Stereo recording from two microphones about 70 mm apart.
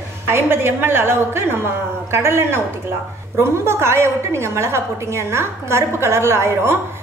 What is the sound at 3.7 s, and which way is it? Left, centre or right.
A woman's voice, right.